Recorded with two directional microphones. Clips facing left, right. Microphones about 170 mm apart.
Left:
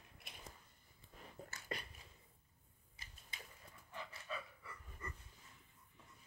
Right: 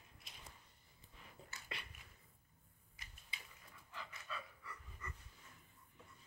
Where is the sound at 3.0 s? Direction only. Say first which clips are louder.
Even; 30° left (ahead or behind).